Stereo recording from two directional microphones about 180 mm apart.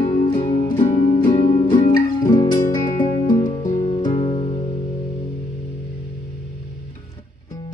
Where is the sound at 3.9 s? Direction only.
30° left (ahead or behind).